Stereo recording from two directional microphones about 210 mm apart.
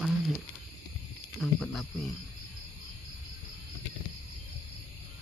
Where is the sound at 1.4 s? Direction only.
Centre (ahead or behind).